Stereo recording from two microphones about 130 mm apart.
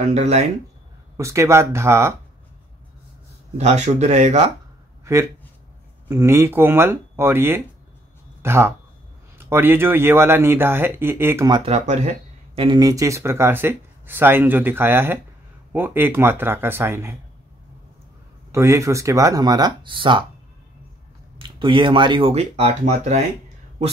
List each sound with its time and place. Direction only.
0.1 s speech: 60° right (ahead or behind)
1.1 s speech: 20° right (ahead or behind)
3.5 s speech: 65° right (ahead or behind)
5.0 s speech: 20° right (ahead or behind)
11.6 s speech: 60° right (ahead or behind)
12.5 s speech: 35° right (ahead or behind)
18.5 s speech: 20° right (ahead or behind); by 20.2 s 40° right (ahead or behind)
21.4 s speech: 40° right (ahead or behind); by 23.2 s 60° right (ahead or behind)